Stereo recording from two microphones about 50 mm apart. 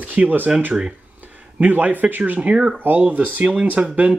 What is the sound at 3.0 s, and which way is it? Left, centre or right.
Speech, right.